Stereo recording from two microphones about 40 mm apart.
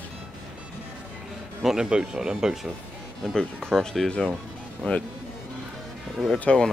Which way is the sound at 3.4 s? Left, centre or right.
Centre.